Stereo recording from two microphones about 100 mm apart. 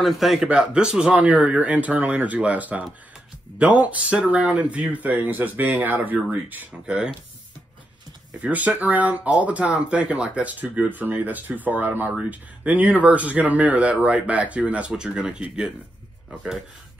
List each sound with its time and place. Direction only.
0.0 s speech: centre (ahead or behind)
8.4 s speech: 15° right (ahead or behind)